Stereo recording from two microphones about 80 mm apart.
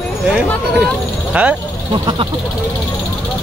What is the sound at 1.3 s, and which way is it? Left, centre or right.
Speech, centre.